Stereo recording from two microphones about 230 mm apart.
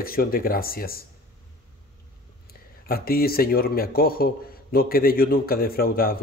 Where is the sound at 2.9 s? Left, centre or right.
Left.